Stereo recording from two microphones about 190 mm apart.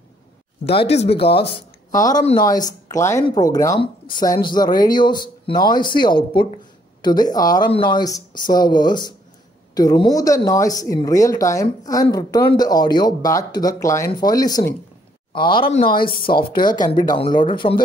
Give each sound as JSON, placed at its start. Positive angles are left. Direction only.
{"t": 0.7, "sound": "speech", "side_deg": 30}
{"t": 1.5, "sound": "speech", "side_deg": 20}
{"t": 15.8, "sound": "speech", "side_deg": 50}
{"t": 16.3, "sound": "speech", "side_deg": 25}